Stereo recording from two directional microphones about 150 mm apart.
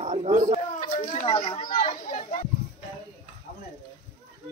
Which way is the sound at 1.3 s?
35° left (ahead or behind).